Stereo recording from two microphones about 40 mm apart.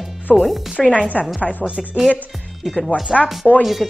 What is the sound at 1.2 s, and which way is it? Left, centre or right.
Speech, left.